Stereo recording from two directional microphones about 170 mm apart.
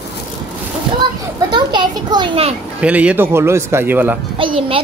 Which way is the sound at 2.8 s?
5° right (ahead or behind).